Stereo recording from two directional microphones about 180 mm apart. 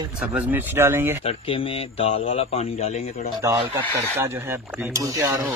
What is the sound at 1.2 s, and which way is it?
A man's voice, 30° left (ahead or behind).